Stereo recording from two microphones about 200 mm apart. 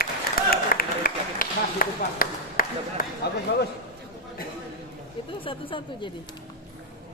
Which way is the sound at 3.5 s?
55° left (ahead or behind).